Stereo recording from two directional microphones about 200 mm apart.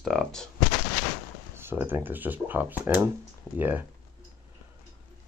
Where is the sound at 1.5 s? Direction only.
10° right (ahead or behind).